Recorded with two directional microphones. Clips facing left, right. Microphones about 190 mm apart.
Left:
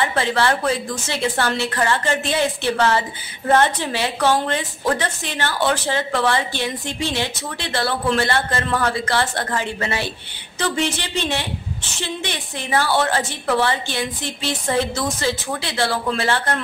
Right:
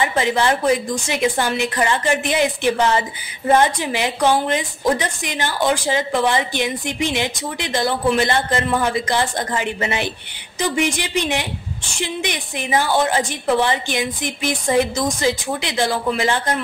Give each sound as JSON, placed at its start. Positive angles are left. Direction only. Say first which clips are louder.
{"t": 0.0, "sound": "a woman's voice", "louder": "right 1 dB", "side_deg": -15}